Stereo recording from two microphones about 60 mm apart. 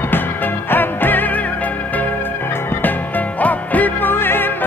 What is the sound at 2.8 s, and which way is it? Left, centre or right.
Music, left.